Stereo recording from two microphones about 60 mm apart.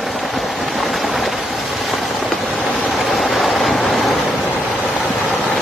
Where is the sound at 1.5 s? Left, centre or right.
Centre.